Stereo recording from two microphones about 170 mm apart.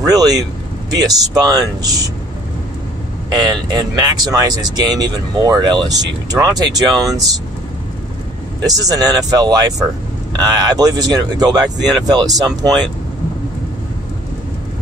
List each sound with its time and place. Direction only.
0.0 s speech: 20° right (ahead or behind)
3.3 s speech: 25° right (ahead or behind)
8.6 s speech: 20° right (ahead or behind)